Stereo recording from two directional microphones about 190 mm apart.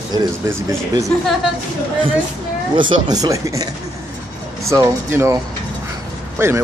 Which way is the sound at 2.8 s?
25° right (ahead or behind).